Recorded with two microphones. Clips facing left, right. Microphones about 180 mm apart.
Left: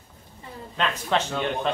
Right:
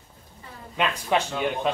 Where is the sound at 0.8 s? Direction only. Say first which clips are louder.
Right 1 dB; 10° right (ahead or behind).